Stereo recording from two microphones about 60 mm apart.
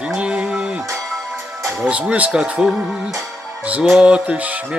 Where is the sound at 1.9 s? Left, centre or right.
Right.